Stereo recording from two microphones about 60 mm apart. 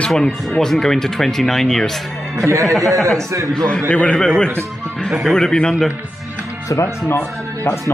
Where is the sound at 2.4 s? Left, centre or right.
Right.